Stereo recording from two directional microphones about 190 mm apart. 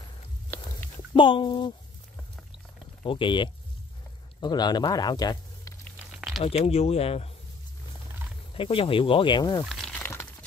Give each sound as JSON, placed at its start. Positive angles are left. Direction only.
{"t": 1.1, "sound": "speech", "side_deg": 25}
{"t": 3.0, "sound": "speech", "side_deg": 25}
{"t": 5.9, "sound": "a sound", "side_deg": -5}
{"t": 6.4, "sound": "speech", "side_deg": 30}
{"t": 8.5, "sound": "speech", "side_deg": 30}
{"t": 9.7, "sound": "crumpling", "side_deg": 5}